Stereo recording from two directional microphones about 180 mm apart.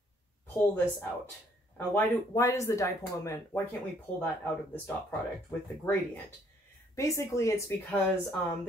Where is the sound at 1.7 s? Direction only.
15° left (ahead or behind).